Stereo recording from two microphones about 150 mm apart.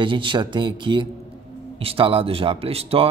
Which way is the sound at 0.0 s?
35° right (ahead or behind).